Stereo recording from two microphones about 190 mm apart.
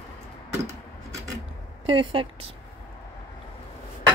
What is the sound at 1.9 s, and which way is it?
Speech, 30° right (ahead or behind).